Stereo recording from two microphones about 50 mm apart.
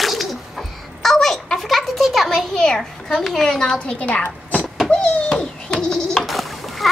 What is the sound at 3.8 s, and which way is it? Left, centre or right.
Speech, left.